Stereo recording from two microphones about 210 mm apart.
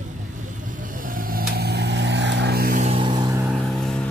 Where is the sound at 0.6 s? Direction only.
40° right (ahead or behind).